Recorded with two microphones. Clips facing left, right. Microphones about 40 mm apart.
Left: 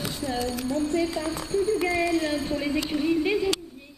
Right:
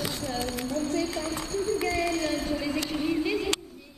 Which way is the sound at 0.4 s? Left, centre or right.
Right.